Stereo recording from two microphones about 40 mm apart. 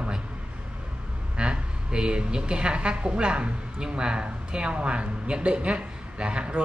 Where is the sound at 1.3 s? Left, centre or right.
Right.